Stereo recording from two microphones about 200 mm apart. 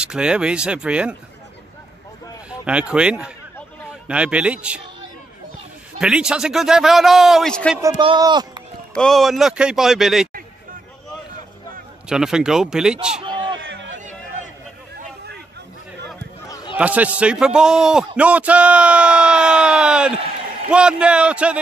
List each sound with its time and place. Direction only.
0.0 s a man's voice: 5° right (ahead or behind)
2.6 s a man's voice: 5° right (ahead or behind)
5.9 s a man's voice: 5° right (ahead or behind)
8.0 s speech: 25° right (ahead or behind)
8.9 s a man's voice: centre (ahead or behind)
12.1 s a man's voice: 5° right (ahead or behind)
13.2 s a sound: 25° right (ahead or behind)
13.6 s a sound: 65° right (ahead or behind)
16.4 s a sound: 20° left (ahead or behind)
16.7 s a man's voice: 5° right (ahead or behind)